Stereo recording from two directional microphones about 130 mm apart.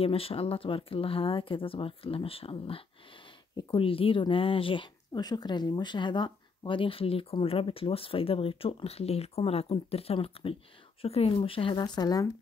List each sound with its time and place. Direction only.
0.0 s speech: 45° left (ahead or behind); by 12.3 s 30° left (ahead or behind)